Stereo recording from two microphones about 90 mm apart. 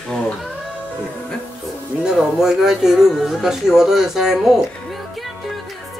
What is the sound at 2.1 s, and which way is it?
Speech, 5° right (ahead or behind).